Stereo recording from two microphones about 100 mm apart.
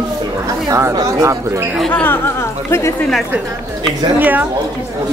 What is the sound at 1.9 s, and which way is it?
Speech, 20° left (ahead or behind).